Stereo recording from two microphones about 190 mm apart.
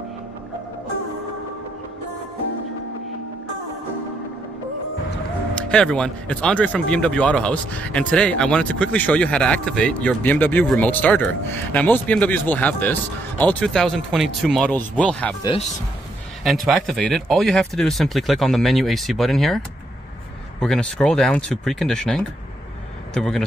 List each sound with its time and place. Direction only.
5.7 s speech: 5° left (ahead or behind)
15.4 s a man's voice: 30° left (ahead or behind)
16.6 s speech: centre (ahead or behind)
20.6 s speech: centre (ahead or behind)